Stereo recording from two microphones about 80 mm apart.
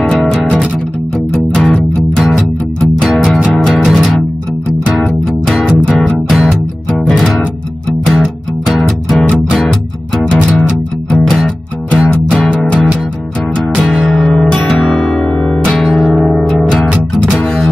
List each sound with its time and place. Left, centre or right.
0.1 s music: centre
5.5 s music: centre